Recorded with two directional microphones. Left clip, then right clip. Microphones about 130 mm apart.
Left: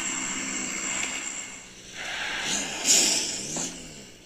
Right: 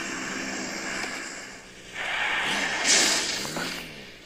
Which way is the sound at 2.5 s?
40° left (ahead or behind).